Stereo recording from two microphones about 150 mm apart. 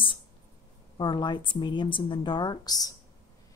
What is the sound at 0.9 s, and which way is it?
A woman's voice, 30° left (ahead or behind).